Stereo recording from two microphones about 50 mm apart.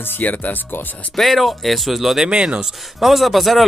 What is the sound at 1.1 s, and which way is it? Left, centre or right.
Speech, centre.